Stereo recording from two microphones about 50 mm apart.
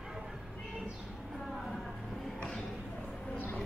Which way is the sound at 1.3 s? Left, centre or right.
Centre.